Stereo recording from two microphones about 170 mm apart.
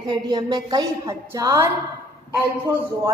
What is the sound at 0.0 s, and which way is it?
A woman's voice, 25° right (ahead or behind).